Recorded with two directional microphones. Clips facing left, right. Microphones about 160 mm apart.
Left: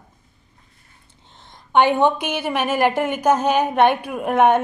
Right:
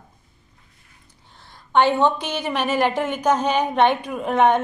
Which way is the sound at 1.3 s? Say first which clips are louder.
Left 1 dB; 20° left (ahead or behind).